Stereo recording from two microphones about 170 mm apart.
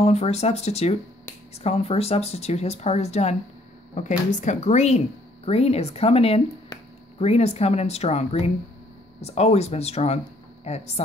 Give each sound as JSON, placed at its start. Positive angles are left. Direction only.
{"t": 0.0, "sound": "speech", "side_deg": 40}